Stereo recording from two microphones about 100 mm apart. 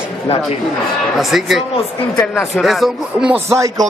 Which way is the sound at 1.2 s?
Centre (ahead or behind).